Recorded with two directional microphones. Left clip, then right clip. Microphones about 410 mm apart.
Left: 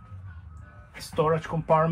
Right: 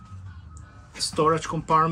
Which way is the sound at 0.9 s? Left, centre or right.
Centre.